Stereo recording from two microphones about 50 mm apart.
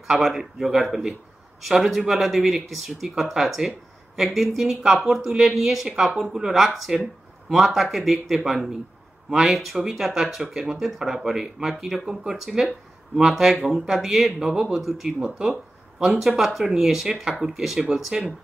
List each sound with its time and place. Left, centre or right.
0.2 s speech: centre
15.1 s speech: centre
16.0 s speech: centre